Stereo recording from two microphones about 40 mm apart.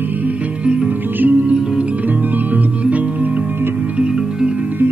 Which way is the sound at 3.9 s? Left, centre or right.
Right.